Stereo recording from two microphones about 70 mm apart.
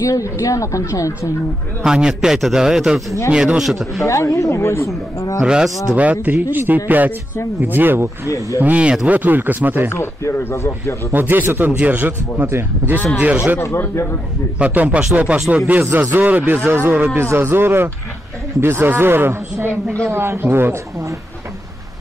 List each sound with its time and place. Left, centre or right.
0.0 s speech: left
1.9 s a man's voice: centre
4.0 s speech: left
5.4 s a man's voice: centre; by 9.8 s right
9.8 s speech: left
11.1 s a man's voice: right
12.4 s a man's voice: right
13.2 s a man's voice: centre
14.6 s a man's voice: right